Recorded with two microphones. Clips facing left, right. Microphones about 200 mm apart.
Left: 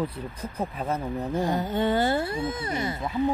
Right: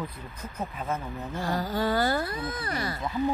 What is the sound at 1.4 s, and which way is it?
Speech, 20° left (ahead or behind).